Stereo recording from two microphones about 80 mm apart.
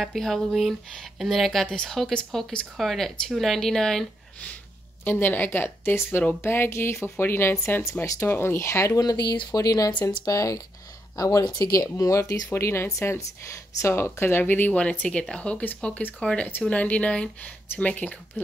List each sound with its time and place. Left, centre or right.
0.0 s speech: centre
2.8 s speech: centre
5.0 s a woman's voice: left
9.0 s speech: left
14.4 s speech: left